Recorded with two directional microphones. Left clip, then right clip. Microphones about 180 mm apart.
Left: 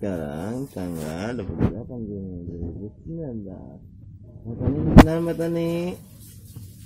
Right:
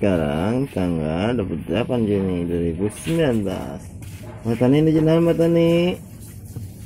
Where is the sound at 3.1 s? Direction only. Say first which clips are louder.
Right 15 dB; 45° right (ahead or behind).